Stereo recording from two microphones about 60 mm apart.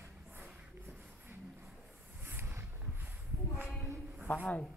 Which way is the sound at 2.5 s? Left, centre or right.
Right.